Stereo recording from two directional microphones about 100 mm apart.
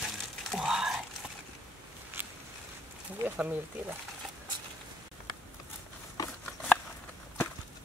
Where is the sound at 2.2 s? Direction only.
20° right (ahead or behind).